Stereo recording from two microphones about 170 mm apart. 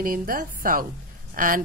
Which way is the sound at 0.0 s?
55° right (ahead or behind).